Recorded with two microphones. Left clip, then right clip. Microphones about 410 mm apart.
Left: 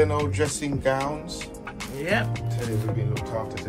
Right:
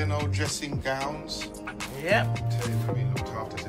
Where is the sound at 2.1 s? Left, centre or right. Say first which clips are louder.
Right 1 dB; right.